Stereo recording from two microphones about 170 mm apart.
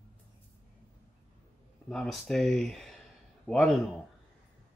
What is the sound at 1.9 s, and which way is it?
A man's voice, 5° left (ahead or behind).